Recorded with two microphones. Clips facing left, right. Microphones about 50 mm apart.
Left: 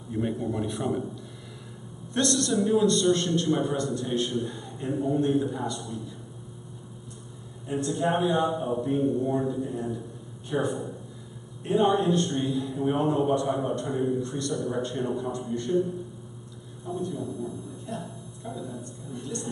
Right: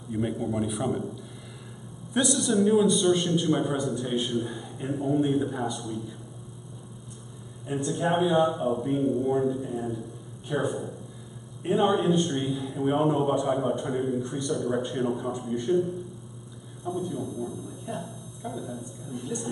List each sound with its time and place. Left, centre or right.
0.1 s a man's voice: centre
2.1 s a man's voice: centre
7.6 s a man's voice: centre
16.9 s a man's voice: centre
17.3 s a man's voice: right
17.9 s speech: centre
18.4 s speech: centre